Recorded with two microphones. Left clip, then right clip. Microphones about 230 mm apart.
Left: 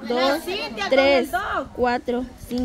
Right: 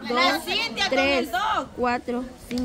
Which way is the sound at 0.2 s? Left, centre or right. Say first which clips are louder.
Right 2 dB; centre.